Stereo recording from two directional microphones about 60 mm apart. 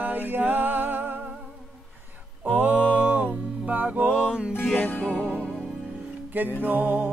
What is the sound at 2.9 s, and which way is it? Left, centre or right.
Music, right.